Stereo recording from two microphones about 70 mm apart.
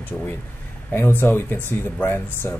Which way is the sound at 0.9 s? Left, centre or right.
Left.